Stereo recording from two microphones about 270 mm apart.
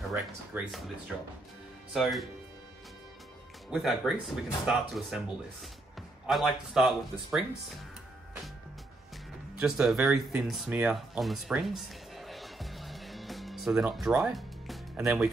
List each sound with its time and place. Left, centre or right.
0.1 s speech: centre
2.0 s speech: centre
3.7 s speech: centre
9.6 s speech: centre